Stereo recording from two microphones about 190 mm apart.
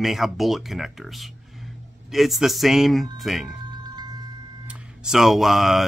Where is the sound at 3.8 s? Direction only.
20° right (ahead or behind).